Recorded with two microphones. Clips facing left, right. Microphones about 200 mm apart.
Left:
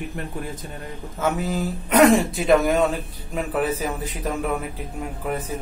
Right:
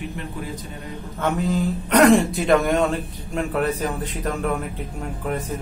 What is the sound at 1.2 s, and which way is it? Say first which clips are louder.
A man's voice: right 2 dB; 5° left (ahead or behind).